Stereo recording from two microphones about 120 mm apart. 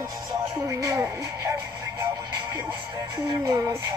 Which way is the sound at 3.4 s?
25° right (ahead or behind).